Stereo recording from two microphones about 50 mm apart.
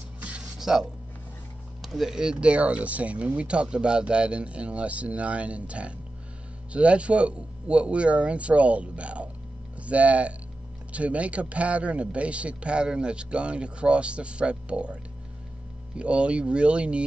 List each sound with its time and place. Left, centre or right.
0.2 s a sound: right
0.6 s speech: centre
1.9 s speech: centre
16.0 s speech: right